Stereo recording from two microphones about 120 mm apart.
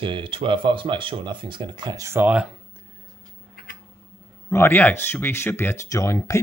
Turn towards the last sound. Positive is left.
turn(degrees=25)  # may be behind; listen again after turning